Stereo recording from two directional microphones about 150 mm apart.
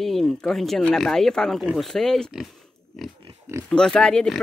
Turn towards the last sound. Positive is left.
turn(degrees=5)  # may be behind; listen again after turning